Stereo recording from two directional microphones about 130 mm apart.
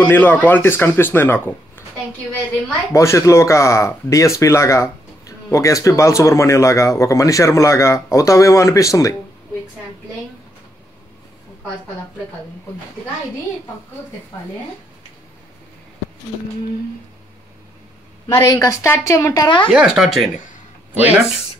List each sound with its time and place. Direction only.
0.0 s speech: 15° left (ahead or behind)
2.9 s speech: 20° left (ahead or behind)
18.3 s speech: 25° left (ahead or behind)
19.7 s speech: 5° right (ahead or behind)